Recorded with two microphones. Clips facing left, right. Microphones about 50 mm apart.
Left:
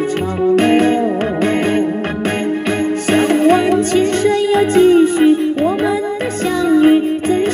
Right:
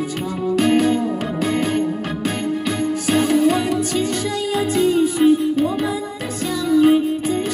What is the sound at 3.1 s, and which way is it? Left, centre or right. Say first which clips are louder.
Music: left 5 dB; left.